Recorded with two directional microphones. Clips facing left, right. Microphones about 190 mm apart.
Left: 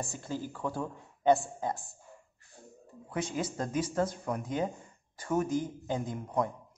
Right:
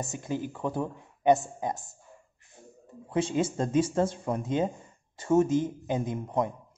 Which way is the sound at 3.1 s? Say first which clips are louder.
Right 7 dB; 25° right (ahead or behind).